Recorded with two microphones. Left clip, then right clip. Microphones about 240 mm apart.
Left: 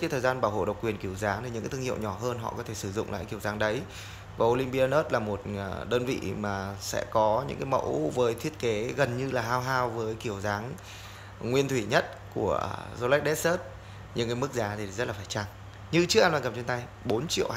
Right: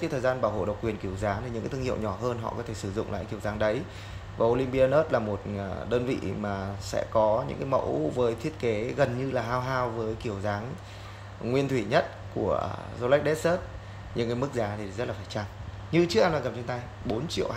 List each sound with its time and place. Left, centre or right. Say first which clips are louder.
0.0 s speech: even; centre